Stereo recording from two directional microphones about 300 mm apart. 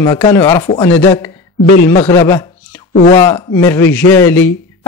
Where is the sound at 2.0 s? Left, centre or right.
Centre.